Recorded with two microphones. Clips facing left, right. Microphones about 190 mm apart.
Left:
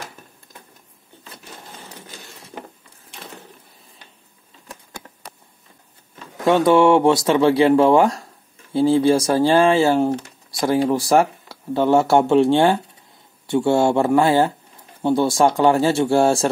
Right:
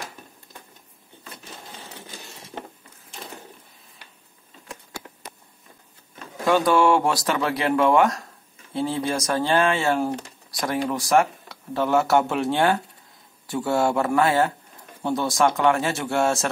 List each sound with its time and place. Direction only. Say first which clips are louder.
6.4 s speech: left 5 dB; 25° left (ahead or behind)